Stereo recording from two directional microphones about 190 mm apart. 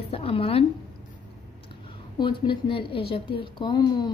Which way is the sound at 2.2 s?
25° left (ahead or behind).